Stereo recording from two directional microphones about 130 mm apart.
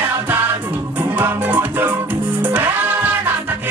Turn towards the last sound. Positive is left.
turn(degrees=-15)  # may be behind; listen again after turning